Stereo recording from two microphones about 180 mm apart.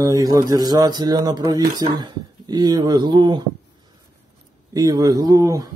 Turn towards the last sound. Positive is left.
turn(degrees=-20)  # may be behind; listen again after turning